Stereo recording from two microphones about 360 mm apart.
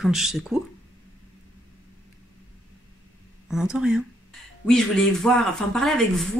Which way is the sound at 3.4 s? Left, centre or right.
Centre.